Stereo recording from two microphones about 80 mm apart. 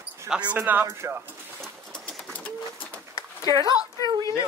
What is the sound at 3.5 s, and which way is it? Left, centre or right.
Speech, right.